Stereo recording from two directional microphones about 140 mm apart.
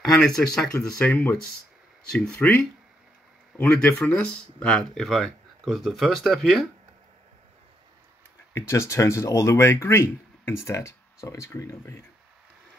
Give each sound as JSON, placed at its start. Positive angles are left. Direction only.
{"t": 0.0, "sound": "speech", "side_deg": 5}
{"t": 3.5, "sound": "speech", "side_deg": 10}
{"t": 8.5, "sound": "speech", "side_deg": 20}